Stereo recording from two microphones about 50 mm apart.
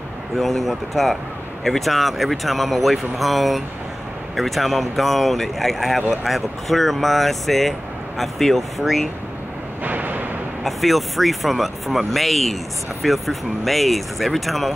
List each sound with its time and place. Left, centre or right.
0.4 s speech: centre
9.8 s a sound: right
10.6 s speech: centre